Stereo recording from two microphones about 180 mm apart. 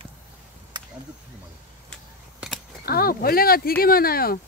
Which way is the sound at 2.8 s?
55° left (ahead or behind).